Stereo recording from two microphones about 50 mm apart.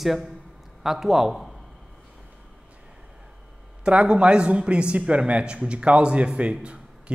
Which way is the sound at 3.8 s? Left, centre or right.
Right.